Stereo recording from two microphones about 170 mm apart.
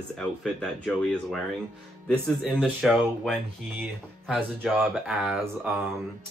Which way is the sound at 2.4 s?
Centre (ahead or behind).